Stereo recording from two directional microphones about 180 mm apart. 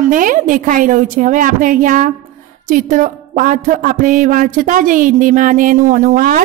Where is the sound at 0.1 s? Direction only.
50° right (ahead or behind).